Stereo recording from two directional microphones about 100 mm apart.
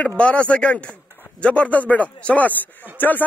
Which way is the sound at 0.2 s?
10° left (ahead or behind).